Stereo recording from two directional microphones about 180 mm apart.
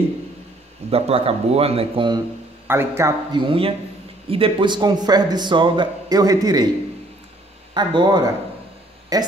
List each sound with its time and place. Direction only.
0.8 s speech: 35° right (ahead or behind)
2.7 s a man's voice: 15° right (ahead or behind)
7.7 s a man's voice: 25° right (ahead or behind)